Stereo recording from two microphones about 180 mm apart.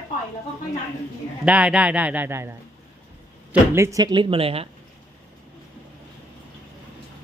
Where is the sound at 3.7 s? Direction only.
15° right (ahead or behind); by 4.7 s 30° right (ahead or behind).